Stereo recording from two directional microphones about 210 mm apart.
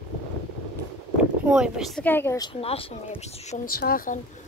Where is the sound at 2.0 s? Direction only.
10° left (ahead or behind).